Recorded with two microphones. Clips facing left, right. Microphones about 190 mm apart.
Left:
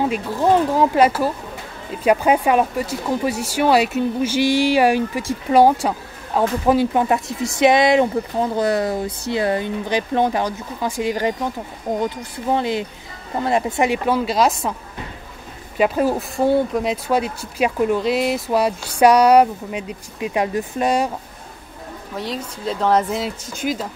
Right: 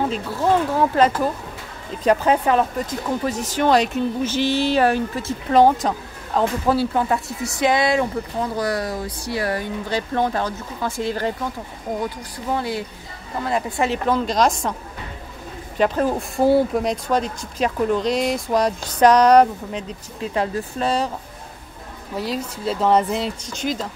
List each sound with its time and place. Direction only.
0.1 s speech: 15° left (ahead or behind)
15.8 s speech: 10° left (ahead or behind)
22.1 s speech: 5° right (ahead or behind)